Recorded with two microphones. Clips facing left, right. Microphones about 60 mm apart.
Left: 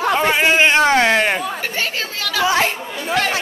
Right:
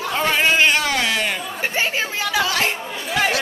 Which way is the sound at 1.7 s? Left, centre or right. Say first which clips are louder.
Right 1 dB; centre.